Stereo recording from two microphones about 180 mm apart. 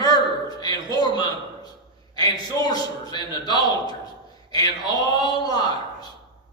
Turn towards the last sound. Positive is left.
turn(degrees=20)  # may be behind; listen again after turning